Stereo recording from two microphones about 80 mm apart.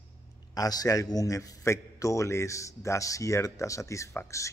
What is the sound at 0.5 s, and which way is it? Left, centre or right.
A man's voice, left.